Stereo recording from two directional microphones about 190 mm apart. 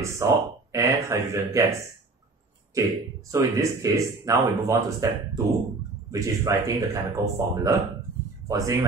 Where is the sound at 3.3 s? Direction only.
15° right (ahead or behind).